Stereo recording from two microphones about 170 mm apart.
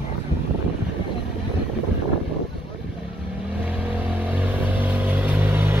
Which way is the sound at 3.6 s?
10° right (ahead or behind).